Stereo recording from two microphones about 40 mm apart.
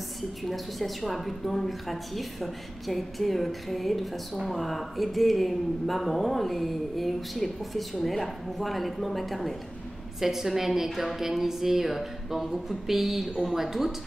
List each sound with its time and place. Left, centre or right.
0.5 s a woman's voice: centre